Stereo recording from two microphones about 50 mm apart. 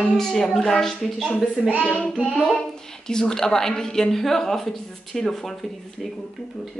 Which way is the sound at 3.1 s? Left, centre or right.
Centre.